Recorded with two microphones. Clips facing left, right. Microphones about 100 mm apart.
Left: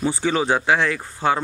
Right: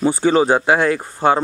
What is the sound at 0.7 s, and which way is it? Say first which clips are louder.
Speech: right 4 dB; 45° right (ahead or behind).